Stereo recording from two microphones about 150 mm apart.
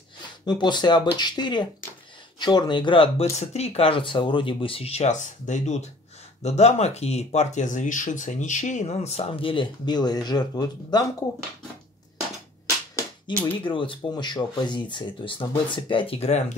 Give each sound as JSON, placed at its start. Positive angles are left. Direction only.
{"t": 0.5, "sound": "speech", "side_deg": 30}
{"t": 13.3, "sound": "speech", "side_deg": 10}
{"t": 13.7, "sound": "speech", "side_deg": 35}